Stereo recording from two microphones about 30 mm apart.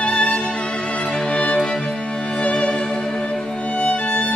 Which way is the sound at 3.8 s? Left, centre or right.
Left.